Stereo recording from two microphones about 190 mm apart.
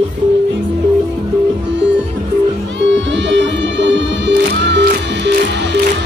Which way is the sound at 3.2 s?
70° right (ahead or behind).